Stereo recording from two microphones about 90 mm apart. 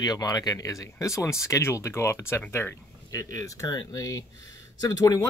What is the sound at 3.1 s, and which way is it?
Speech, 40° left (ahead or behind).